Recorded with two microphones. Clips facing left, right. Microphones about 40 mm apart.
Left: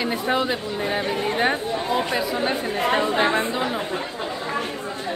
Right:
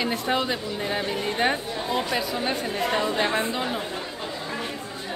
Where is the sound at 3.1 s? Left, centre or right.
Left.